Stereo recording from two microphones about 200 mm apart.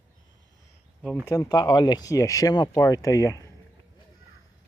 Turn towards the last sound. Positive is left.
turn(degrees=15)  # may be behind; listen again after turning